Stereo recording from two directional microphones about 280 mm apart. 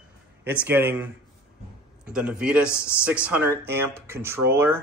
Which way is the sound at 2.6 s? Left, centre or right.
Centre.